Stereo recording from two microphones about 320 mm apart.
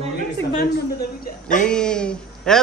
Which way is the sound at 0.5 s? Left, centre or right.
Left.